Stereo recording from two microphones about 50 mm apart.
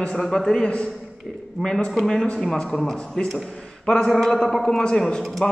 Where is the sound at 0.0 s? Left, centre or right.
Centre.